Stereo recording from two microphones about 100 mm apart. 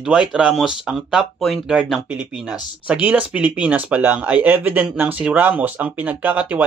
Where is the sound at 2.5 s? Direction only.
15° right (ahead or behind).